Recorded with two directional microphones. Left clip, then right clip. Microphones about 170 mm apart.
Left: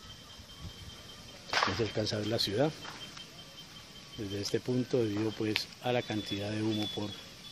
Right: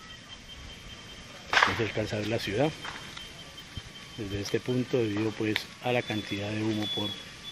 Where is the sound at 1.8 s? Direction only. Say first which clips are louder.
Right 3 dB; 20° left (ahead or behind).